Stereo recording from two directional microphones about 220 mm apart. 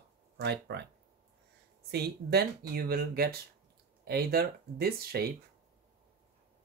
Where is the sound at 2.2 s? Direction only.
45° right (ahead or behind).